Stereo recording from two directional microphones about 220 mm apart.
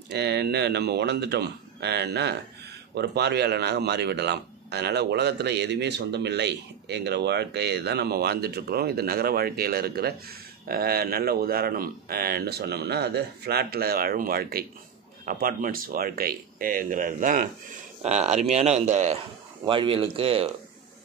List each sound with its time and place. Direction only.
0.1 s speech: 50° right (ahead or behind); by 20.4 s 25° right (ahead or behind)